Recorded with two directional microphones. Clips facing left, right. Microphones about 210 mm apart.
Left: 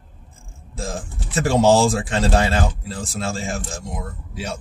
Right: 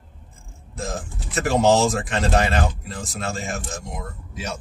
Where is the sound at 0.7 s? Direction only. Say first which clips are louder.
Left 1 dB; 30° left (ahead or behind).